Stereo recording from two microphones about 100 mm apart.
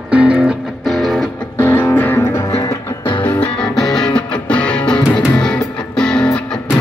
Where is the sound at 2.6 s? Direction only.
50° left (ahead or behind).